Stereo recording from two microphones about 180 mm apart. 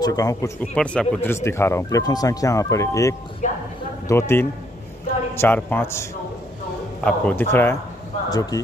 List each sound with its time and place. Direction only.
0.0 s speech: 20° left (ahead or behind)
0.6 s speech: 5° left (ahead or behind)
3.4 s speech: 45° left (ahead or behind)
4.1 s speech: 15° left (ahead or behind)
7.1 s speech: 10° left (ahead or behind)